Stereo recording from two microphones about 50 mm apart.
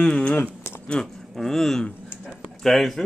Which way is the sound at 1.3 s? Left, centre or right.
Centre.